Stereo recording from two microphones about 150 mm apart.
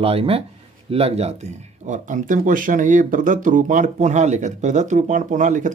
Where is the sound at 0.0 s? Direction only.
40° right (ahead or behind).